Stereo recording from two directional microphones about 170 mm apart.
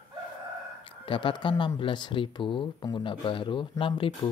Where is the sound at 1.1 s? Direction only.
30° left (ahead or behind).